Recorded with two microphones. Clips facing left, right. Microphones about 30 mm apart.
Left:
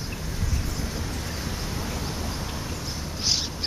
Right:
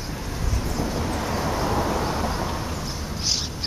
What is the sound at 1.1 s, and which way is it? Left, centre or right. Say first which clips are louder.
Vehicle: right 7 dB; right.